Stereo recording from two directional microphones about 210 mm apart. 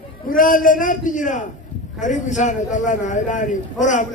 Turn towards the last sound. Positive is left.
turn(degrees=35)  # may be behind; listen again after turning